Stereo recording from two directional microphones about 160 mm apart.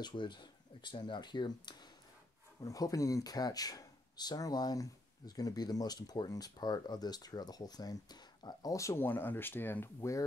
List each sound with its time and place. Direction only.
0.0 s speech: 30° left (ahead or behind)